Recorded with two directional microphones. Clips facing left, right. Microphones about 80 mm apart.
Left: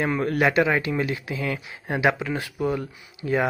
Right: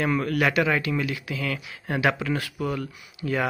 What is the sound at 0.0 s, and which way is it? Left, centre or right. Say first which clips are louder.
Speech: left 1 dB; left.